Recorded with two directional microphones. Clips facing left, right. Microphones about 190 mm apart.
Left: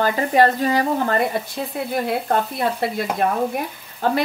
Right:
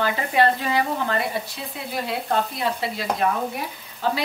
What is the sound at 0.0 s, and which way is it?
Speech, 40° left (ahead or behind).